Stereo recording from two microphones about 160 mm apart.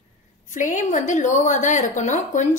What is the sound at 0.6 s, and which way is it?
A woman's voice, 55° left (ahead or behind).